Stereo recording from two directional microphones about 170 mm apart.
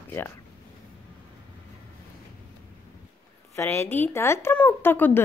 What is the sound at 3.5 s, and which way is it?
A woman's voice, 15° left (ahead or behind).